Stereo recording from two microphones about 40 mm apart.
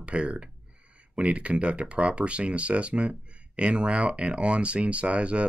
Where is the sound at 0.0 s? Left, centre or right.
Right.